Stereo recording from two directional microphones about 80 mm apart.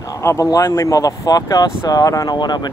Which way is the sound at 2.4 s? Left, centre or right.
Left.